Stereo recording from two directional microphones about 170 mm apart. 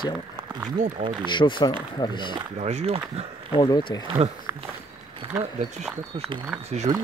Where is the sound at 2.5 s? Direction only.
40° right (ahead or behind).